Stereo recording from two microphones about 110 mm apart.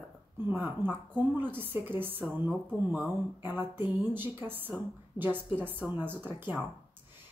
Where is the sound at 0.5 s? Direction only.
15° right (ahead or behind).